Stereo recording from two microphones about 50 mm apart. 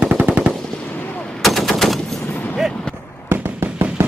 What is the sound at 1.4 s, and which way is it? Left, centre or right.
Machine gun, centre.